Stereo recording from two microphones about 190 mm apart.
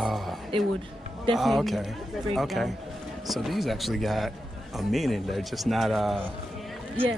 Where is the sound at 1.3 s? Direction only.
Centre (ahead or behind).